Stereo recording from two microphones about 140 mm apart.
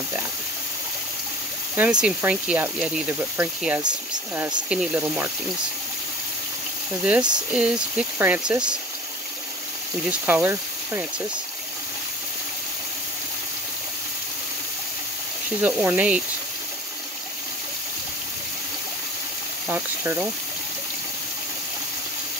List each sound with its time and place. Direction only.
1.8 s speech: 5° right (ahead or behind)
7.0 s speech: 5° right (ahead or behind)
10.0 s speech: 15° right (ahead or behind)
15.6 s speech: 10° right (ahead or behind)
19.7 s speech: 15° right (ahead or behind)